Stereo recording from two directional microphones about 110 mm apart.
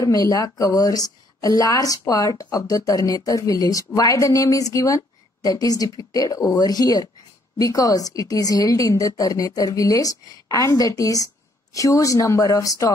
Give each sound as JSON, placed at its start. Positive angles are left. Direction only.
{"t": 0.0, "sound": "a woman's voice", "side_deg": 30}